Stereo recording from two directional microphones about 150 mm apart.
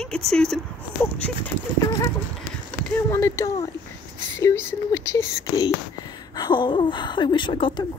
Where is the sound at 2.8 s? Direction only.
15° left (ahead or behind).